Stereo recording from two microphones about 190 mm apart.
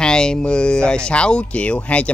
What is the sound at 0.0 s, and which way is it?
A man's voice, 5° left (ahead or behind).